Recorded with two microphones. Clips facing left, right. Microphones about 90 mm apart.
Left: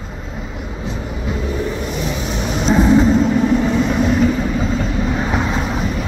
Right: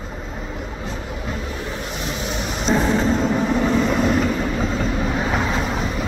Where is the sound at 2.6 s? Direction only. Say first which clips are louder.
Left 6 dB; 10° left (ahead or behind).